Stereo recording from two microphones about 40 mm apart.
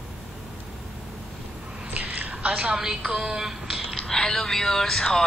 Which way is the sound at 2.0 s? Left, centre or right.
Right.